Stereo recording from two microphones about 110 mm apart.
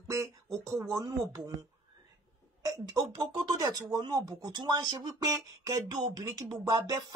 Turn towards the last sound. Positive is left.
turn(degrees=-35)  # may be behind; listen again after turning